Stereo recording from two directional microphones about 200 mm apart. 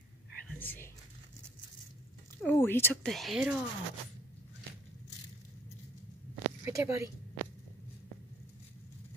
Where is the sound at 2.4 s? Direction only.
10° left (ahead or behind).